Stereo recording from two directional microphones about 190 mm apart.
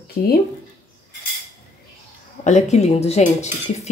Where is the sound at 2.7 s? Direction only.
35° left (ahead or behind).